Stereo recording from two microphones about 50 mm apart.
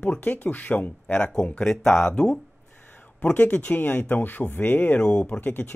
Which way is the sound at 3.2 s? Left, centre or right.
Left.